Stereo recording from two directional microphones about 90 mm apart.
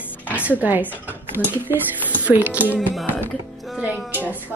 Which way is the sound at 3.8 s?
20° right (ahead or behind).